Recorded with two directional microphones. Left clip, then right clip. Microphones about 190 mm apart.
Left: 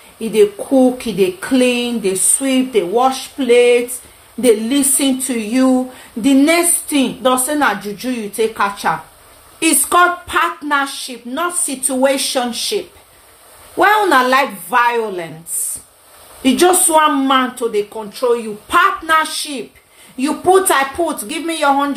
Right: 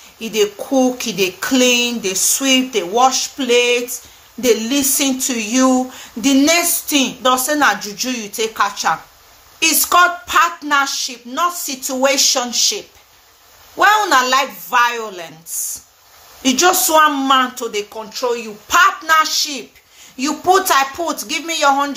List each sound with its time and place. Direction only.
0.2 s speech: 15° left (ahead or behind)
16.4 s speech: 15° left (ahead or behind)